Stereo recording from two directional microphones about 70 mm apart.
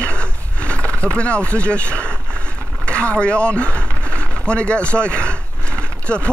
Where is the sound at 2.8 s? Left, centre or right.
Centre.